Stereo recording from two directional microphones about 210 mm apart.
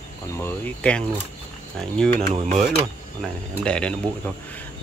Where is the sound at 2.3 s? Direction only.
30° right (ahead or behind).